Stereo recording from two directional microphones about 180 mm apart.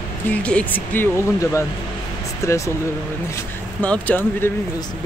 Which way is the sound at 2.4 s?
15° left (ahead or behind).